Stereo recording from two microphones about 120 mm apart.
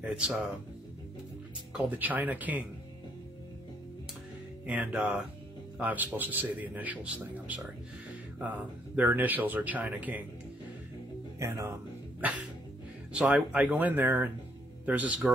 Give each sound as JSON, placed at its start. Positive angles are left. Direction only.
{"t": 0.0, "sound": "speech", "side_deg": -5}
{"t": 1.7, "sound": "a man's voice", "side_deg": -15}
{"t": 4.6, "sound": "a man's voice", "side_deg": -10}
{"t": 11.3, "sound": "speech", "side_deg": -25}
{"t": 12.2, "sound": "music", "side_deg": -15}
{"t": 13.1, "sound": "a man's voice", "side_deg": -10}